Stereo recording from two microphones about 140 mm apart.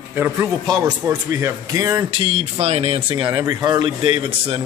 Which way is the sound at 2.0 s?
40° right (ahead or behind).